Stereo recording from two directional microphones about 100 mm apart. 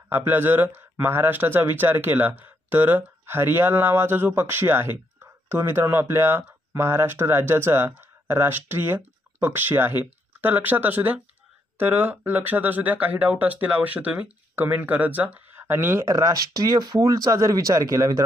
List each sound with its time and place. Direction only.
0.1 s speech: 20° right (ahead or behind)